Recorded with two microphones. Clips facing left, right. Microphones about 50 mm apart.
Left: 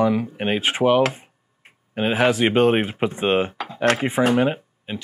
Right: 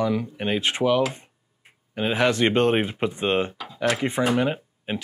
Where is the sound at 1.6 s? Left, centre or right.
Left.